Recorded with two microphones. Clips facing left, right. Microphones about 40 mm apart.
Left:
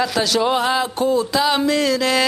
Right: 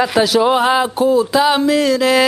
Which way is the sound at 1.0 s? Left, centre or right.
Centre.